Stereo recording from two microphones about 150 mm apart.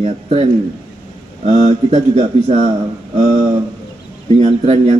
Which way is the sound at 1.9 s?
50° right (ahead or behind).